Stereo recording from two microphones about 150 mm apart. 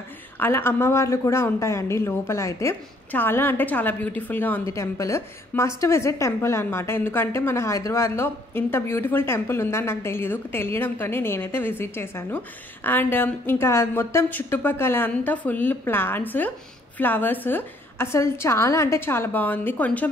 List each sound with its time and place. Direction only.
0.4 s a woman's voice: 15° left (ahead or behind)